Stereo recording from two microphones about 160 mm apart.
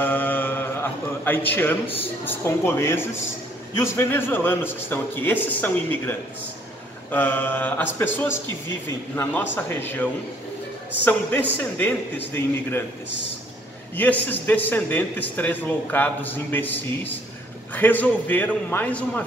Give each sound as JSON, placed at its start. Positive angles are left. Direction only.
{"t": 0.0, "sound": "mantra", "side_deg": 10}
{"t": 1.2, "sound": "a man's voice", "side_deg": 10}
{"t": 11.1, "sound": "a man's voice", "side_deg": 10}
{"t": 13.9, "sound": "a man's voice", "side_deg": 10}